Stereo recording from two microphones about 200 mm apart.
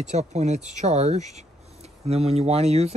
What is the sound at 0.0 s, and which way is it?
Speech, 35° right (ahead or behind).